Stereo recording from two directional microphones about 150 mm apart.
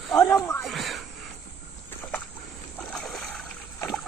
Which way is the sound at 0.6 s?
Centre (ahead or behind).